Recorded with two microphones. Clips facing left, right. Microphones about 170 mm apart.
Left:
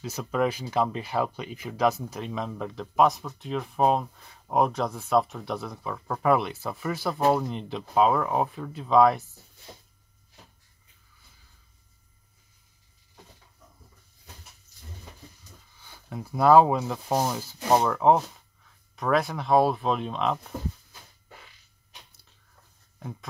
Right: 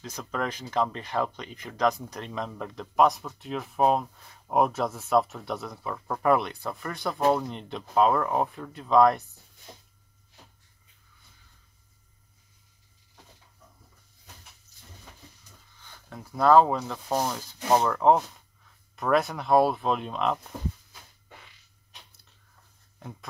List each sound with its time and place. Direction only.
0.0 s speech: 5° left (ahead or behind)
15.8 s speech: 10° left (ahead or behind)